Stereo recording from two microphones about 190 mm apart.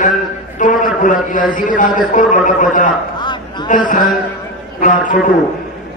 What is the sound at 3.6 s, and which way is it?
A man's voice, 45° left (ahead or behind).